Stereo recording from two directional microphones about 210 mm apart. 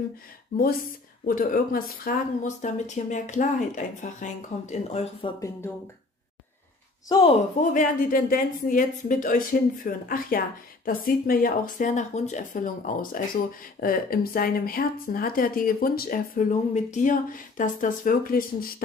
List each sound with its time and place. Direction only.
0.5 s a woman's voice: 45° left (ahead or behind)
7.7 s a woman's voice: 40° left (ahead or behind)